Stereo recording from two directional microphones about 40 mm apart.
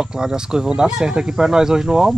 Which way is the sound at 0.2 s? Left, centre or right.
Centre.